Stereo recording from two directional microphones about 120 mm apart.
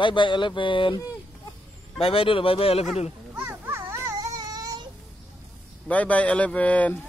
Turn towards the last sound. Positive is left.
turn(degrees=10)  # may be behind; listen again after turning